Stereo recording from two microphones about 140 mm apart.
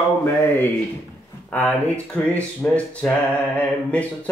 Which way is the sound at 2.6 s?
10° left (ahead or behind).